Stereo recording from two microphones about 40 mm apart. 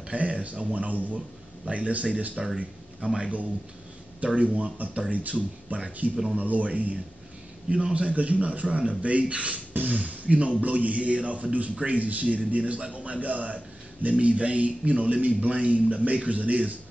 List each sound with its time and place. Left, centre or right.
0.1 s a man's voice: right
2.4 s speech: centre
3.2 s a man's voice: right